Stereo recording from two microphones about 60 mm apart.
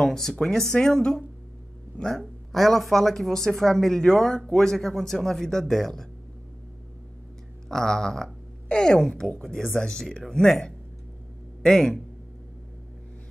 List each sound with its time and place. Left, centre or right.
0.0 s speech: centre
7.6 s speech: centre
11.6 s speech: centre